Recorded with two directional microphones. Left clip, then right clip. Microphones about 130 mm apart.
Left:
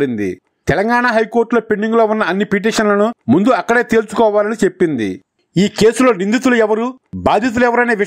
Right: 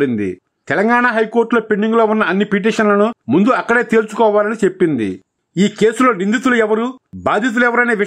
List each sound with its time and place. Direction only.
0.0 s speech: 35° left (ahead or behind)